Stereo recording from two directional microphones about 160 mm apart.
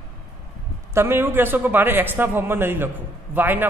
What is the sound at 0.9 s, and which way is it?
A man's voice, 15° right (ahead or behind).